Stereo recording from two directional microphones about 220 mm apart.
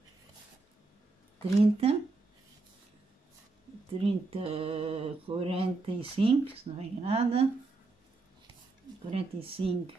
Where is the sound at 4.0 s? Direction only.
25° right (ahead or behind).